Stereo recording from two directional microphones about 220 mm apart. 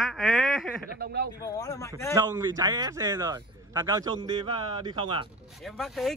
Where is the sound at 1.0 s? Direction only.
45° right (ahead or behind).